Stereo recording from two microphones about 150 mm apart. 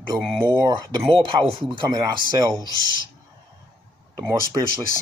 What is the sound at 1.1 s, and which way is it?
Speech, 40° right (ahead or behind).